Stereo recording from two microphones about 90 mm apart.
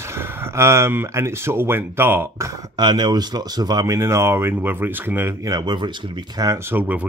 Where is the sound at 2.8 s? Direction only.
55° right (ahead or behind); by 5.4 s 25° right (ahead or behind).